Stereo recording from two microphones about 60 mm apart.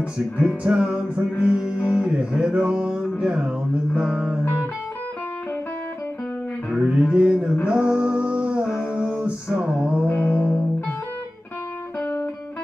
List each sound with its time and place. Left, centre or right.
0.7 s music: centre
6.8 s music: centre
7.6 s a sound: centre
9.5 s music: centre
10.0 s music: left